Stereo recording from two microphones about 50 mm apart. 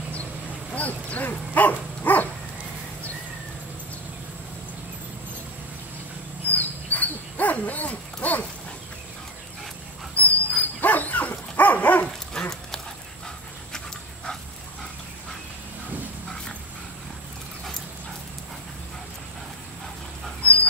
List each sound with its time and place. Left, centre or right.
0.7 s speech: left
6.5 s dog: left
10.1 s dog: left
12.4 s dog: centre